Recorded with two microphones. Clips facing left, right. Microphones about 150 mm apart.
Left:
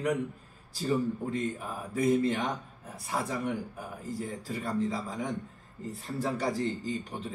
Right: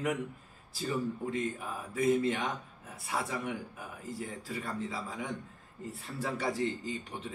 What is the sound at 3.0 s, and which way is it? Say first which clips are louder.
Speech: left 3 dB; 40° left (ahead or behind).